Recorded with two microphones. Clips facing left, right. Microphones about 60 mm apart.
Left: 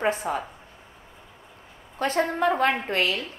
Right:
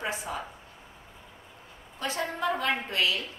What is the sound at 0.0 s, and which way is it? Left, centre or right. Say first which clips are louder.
Speech: left 8 dB; left.